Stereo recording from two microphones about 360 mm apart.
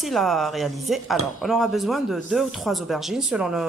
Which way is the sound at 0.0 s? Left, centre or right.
Centre.